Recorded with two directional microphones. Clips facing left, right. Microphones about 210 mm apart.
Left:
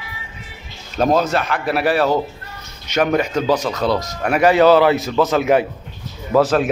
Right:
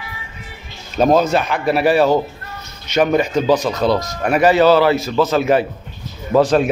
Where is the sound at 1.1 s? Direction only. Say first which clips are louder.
Right 3 dB; centre (ahead or behind).